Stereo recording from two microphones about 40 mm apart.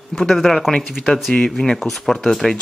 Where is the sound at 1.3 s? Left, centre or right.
Centre.